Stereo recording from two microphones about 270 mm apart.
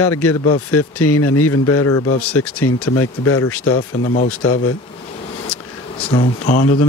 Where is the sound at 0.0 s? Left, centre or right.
Left.